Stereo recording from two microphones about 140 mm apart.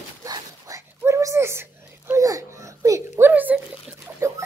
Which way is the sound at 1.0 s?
20° right (ahead or behind).